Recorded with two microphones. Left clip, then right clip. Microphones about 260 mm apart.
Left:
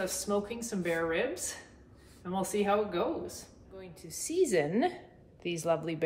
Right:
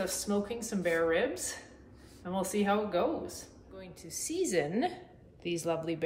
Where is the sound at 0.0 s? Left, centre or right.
Centre.